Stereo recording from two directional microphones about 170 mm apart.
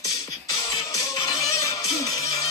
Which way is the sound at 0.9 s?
20° left (ahead or behind).